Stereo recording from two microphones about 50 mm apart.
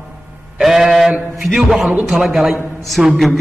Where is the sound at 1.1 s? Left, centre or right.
Right.